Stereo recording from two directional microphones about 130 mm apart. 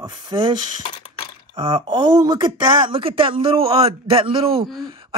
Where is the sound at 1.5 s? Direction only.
40° right (ahead or behind).